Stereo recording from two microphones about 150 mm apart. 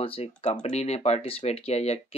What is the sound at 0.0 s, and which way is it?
Speech, 40° left (ahead or behind).